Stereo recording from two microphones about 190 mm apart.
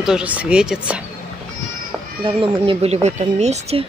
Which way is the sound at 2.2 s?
25° right (ahead or behind).